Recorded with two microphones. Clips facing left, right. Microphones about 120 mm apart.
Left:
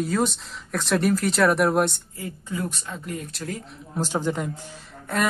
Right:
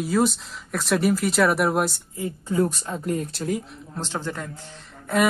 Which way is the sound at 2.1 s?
30° right (ahead or behind).